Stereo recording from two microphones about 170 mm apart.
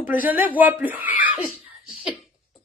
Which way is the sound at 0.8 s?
10° right (ahead or behind).